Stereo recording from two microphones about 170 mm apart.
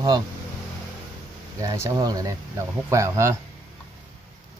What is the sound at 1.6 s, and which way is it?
Speech, 20° right (ahead or behind).